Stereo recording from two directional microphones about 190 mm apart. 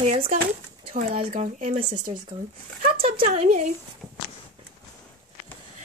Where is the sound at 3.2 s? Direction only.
40° right (ahead or behind).